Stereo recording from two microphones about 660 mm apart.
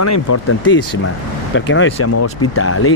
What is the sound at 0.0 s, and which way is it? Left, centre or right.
Speech, left.